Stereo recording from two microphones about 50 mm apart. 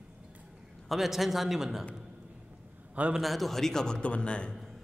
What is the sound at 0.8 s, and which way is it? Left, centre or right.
A man's voice, centre.